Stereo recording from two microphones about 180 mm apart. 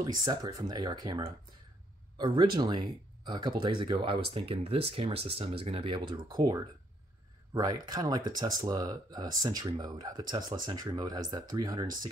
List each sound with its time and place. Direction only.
0.0 s speech: 25° right (ahead or behind)